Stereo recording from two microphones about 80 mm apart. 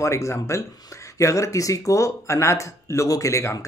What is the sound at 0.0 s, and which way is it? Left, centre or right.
Speech, left.